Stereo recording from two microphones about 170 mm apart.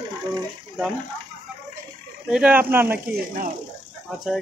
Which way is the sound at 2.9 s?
55° right (ahead or behind).